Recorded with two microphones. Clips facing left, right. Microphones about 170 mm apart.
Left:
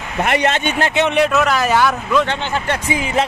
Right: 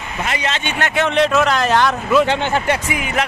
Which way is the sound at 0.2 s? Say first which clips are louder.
Left 6 dB; 55° left (ahead or behind).